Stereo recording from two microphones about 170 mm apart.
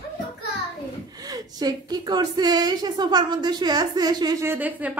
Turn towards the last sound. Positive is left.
turn(degrees=-10)  # may be behind; listen again after turning